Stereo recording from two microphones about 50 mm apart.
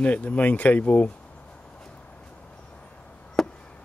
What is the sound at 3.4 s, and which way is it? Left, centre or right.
Chop, centre.